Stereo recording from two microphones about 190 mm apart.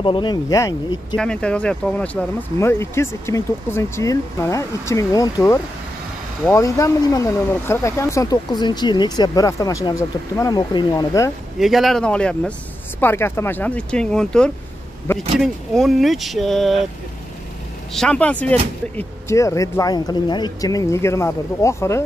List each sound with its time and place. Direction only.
0.0 s speech: 25° left (ahead or behind)
1.1 s speech: 5° left (ahead or behind)
11.6 s speech: centre (ahead or behind)
15.4 s speech: centre (ahead or behind)
17.9 s speech: 5° left (ahead or behind)